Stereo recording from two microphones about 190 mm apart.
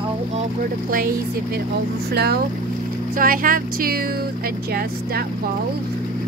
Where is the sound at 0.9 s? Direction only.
50° right (ahead or behind).